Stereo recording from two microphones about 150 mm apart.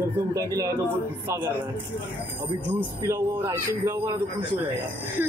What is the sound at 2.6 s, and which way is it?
Speech, 10° right (ahead or behind).